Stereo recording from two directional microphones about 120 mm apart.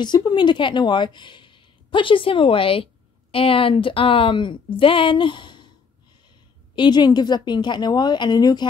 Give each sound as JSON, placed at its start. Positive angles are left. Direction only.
{"t": 0.0, "sound": "speech", "side_deg": 40}
{"t": 6.7, "sound": "a woman's voice", "side_deg": 40}